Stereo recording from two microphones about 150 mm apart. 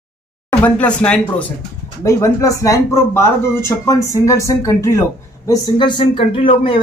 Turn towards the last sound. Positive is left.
turn(degrees=35)  # may be behind; listen again after turning